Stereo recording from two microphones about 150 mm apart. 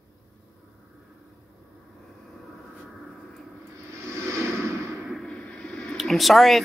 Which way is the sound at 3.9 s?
20° right (ahead or behind).